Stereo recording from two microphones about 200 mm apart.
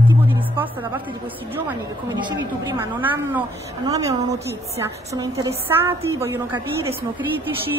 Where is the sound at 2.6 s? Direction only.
15° right (ahead or behind).